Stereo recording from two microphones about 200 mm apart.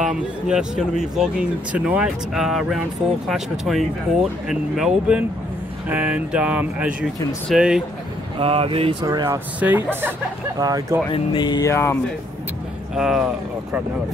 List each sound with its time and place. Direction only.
0.0 s speech: 5° right (ahead or behind)
8.4 s speech: 30° right (ahead or behind)
11.1 s speech: 25° left (ahead or behind)
12.9 s speech: centre (ahead or behind)